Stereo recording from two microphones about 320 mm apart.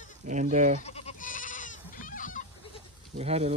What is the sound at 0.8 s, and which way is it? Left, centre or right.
Goat, centre.